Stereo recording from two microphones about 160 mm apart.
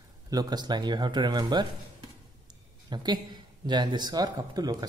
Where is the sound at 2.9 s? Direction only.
25° right (ahead or behind).